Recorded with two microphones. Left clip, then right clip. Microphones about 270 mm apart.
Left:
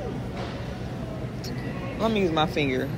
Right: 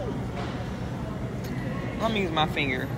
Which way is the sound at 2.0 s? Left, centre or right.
Centre.